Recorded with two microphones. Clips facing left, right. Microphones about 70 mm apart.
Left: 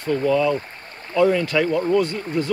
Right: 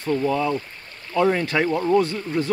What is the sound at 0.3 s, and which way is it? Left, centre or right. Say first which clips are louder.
Speech: left 4 dB; right.